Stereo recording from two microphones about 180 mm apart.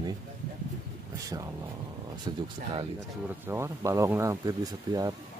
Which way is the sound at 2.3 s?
25° right (ahead or behind).